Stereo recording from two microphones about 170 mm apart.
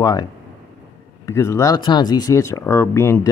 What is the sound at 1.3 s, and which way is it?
Speech, 15° left (ahead or behind).